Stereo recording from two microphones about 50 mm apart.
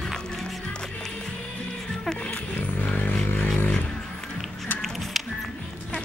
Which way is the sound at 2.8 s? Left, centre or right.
Left.